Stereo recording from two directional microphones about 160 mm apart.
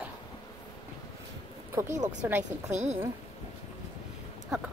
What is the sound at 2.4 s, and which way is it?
Speech, 45° right (ahead or behind).